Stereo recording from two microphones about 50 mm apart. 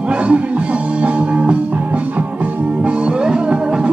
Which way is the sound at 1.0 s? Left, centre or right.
Right.